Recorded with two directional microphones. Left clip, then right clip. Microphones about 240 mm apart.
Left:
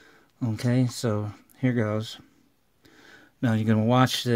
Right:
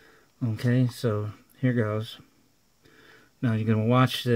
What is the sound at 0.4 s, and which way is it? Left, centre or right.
Speech, left.